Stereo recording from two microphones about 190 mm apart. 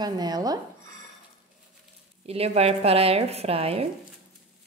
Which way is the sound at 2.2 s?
30° right (ahead or behind).